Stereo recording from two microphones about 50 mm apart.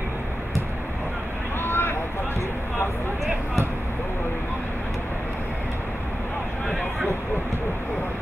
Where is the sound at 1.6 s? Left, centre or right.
Left.